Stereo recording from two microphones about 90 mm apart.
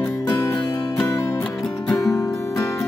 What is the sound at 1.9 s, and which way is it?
Music, 35° left (ahead or behind).